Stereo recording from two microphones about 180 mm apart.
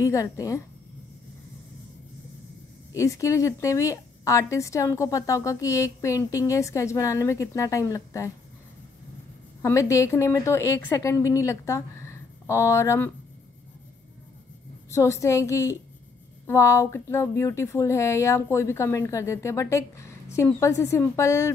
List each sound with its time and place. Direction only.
0.0 s a woman's voice: 20° left (ahead or behind)
2.9 s a woman's voice: 15° left (ahead or behind)
9.6 s a woman's voice: 15° left (ahead or behind)
14.9 s a woman's voice: 15° left (ahead or behind)